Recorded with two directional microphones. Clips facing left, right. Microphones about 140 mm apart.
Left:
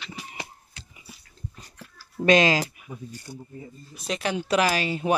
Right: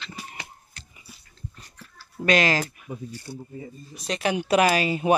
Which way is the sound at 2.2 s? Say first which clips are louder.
Left 3 dB; 20° left (ahead or behind).